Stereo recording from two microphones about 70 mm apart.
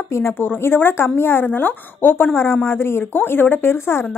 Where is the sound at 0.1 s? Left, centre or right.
Left.